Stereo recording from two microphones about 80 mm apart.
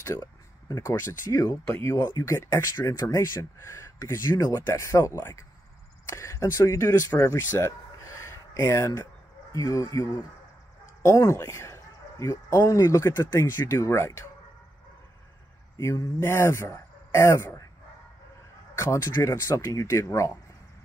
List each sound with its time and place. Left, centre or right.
0.0 s speech: left
15.8 s speech: left
18.8 s speech: left